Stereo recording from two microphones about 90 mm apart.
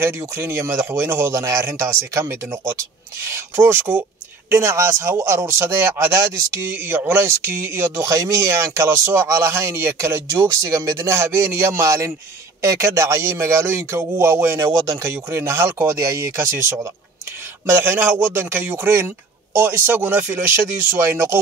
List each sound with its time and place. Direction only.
0.0 s speech: 30° right (ahead or behind)
3.3 s a man's voice: 30° right (ahead or behind)
17.6 s a man's voice: 30° right (ahead or behind)